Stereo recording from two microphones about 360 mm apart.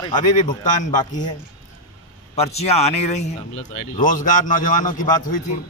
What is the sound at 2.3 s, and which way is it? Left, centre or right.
A man's voice, centre.